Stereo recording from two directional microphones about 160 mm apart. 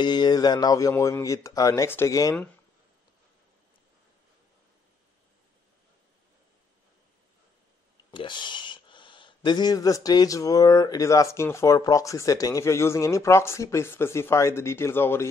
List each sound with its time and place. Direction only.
0.0 s speech: 25° left (ahead or behind)
8.1 s speech: 30° left (ahead or behind); by 15.2 s 15° left (ahead or behind)